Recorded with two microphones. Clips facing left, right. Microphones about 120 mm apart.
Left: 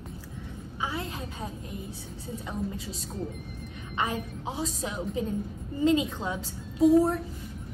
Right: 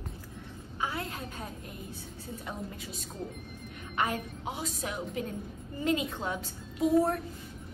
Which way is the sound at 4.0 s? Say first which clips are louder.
Left 1 dB; 25° left (ahead or behind).